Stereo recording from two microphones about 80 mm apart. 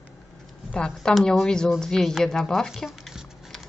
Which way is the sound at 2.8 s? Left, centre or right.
Centre.